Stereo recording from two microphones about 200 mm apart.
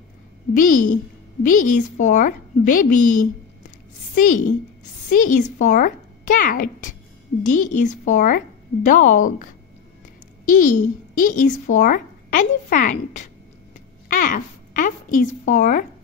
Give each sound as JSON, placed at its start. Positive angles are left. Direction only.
{"t": 0.6, "sound": "a woman's voice", "side_deg": 40}
{"t": 14.0, "sound": "a sound", "side_deg": 45}
{"t": 15.4, "sound": "speech", "side_deg": 40}